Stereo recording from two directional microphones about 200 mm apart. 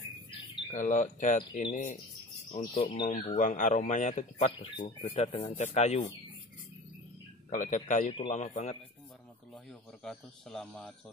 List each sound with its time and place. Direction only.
0.7 s speech: 40° left (ahead or behind)
7.4 s speech: 40° left (ahead or behind)
9.5 s speech: 5° left (ahead or behind)